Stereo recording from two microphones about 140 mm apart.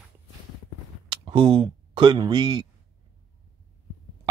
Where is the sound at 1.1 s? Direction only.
40° right (ahead or behind).